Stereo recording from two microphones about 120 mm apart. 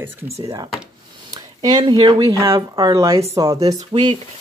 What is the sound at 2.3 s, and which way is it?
Speech, 25° right (ahead or behind).